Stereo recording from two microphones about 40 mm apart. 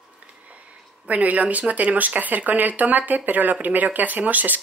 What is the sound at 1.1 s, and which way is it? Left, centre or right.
Speech, right.